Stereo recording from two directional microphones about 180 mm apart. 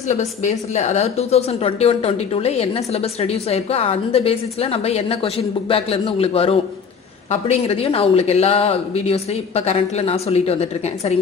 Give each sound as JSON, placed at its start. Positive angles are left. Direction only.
{"t": 0.1, "sound": "a woman's voice", "side_deg": 40}